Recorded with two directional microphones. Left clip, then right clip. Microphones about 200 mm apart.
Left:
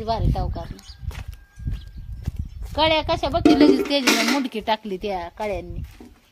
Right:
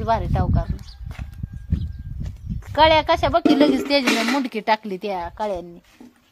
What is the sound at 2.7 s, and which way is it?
A woman's voice, 35° right (ahead or behind).